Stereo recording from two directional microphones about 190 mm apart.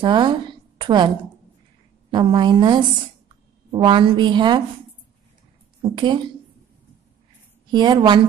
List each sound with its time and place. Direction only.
0.0 s a woman's voice: 25° right (ahead or behind)
5.8 s a woman's voice: 25° right (ahead or behind)
7.7 s a woman's voice: 25° right (ahead or behind)